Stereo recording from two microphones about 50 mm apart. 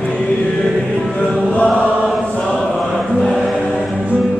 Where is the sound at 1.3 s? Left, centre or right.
Left.